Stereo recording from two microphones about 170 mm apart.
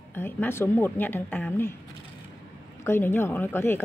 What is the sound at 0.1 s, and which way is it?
A woman's voice, 15° left (ahead or behind).